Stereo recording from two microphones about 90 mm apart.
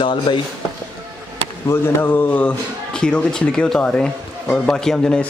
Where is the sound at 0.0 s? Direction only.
65° left (ahead or behind).